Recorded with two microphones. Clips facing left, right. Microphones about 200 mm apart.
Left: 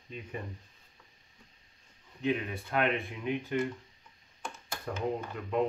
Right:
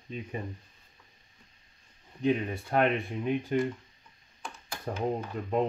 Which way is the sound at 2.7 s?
40° right (ahead or behind).